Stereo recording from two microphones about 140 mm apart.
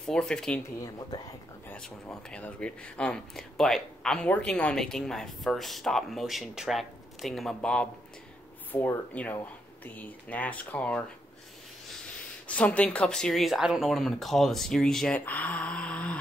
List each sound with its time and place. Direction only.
0.0 s speech: 5° left (ahead or behind)
0.8 s speech: 30° left (ahead or behind)
2.2 s speech: 10° left (ahead or behind)
12.4 s speech: 10° left (ahead or behind)